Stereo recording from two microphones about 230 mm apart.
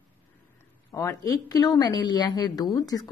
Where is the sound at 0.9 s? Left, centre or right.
Centre.